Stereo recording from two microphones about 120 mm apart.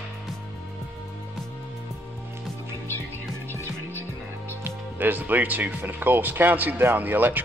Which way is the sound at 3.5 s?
20° left (ahead or behind).